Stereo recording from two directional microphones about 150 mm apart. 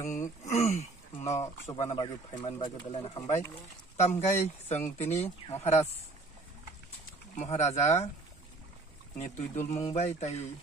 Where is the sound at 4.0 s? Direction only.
50° left (ahead or behind).